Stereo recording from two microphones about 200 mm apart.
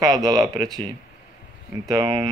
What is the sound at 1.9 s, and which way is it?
Speech, 20° right (ahead or behind).